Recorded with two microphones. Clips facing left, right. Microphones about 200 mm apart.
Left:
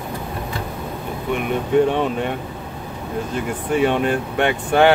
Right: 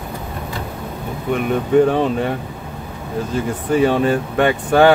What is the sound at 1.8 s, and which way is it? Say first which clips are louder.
Speech: right 3 dB; 35° right (ahead or behind).